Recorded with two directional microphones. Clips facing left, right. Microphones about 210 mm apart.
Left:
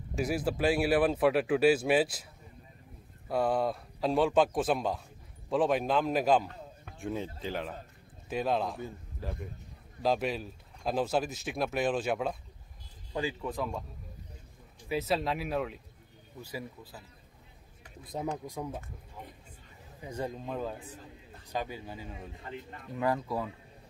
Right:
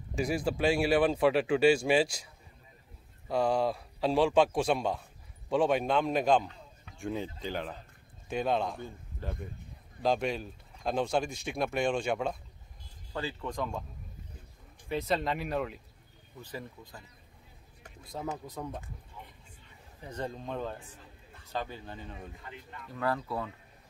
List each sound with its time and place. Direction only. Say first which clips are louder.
0.1 s speech: even; 5° left (ahead or behind)
3.3 s a man's voice: right 1 dB; 5° left (ahead or behind)
14.9 s speech: even; 5° left (ahead or behind)
18.4 s speech: left 2 dB; 10° left (ahead or behind)
20.0 s speech: left 1 dB; 10° left (ahead or behind)
22.4 s a man's voice: left 4 dB; 35° left (ahead or behind)
22.9 s speech: left 2 dB; 15° left (ahead or behind)